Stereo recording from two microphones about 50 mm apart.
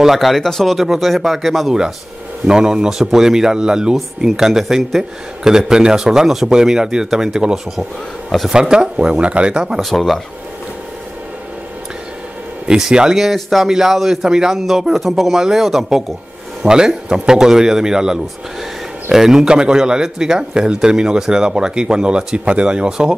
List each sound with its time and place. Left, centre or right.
0.0 s speech: centre
0.7 s speech: centre
2.4 s a man's voice: centre
9.8 s speech: centre
12.6 s a man's voice: centre